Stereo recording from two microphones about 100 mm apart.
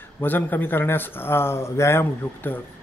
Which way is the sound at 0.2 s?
20° left (ahead or behind).